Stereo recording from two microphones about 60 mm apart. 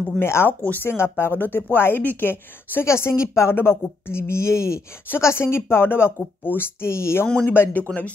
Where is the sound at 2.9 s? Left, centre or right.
Left.